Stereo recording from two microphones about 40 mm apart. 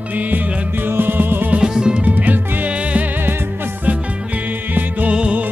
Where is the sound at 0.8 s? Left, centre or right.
Right.